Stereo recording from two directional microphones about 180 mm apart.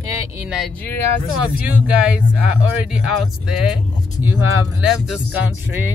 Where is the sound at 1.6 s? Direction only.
10° right (ahead or behind).